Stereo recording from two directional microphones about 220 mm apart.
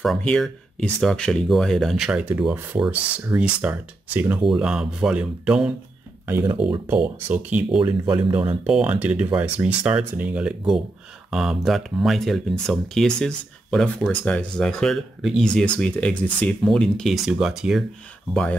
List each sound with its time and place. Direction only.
0.0 s speech: centre (ahead or behind)
7.8 s speech: 20° right (ahead or behind)
8.6 s speech: 5° right (ahead or behind)